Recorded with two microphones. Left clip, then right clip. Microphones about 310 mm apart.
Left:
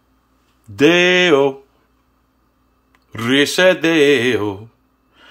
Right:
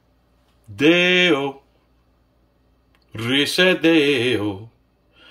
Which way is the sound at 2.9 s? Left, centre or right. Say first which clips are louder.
Left 5 dB; centre.